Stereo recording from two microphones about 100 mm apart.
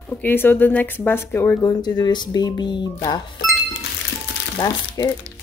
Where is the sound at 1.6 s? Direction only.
40° left (ahead or behind).